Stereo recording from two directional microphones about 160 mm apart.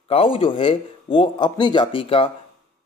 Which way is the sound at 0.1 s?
35° left (ahead or behind).